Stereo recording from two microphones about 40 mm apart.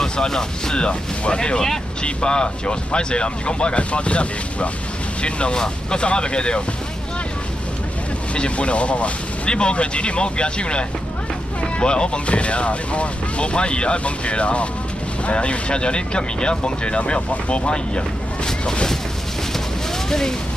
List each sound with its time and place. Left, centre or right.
0.0 s speech: centre
8.4 s speech: left
20.1 s speech: centre